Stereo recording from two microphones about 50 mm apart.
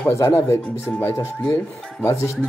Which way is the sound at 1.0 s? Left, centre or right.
Left.